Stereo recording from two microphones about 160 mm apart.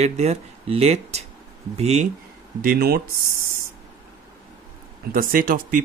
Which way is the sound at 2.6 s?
75° right (ahead or behind).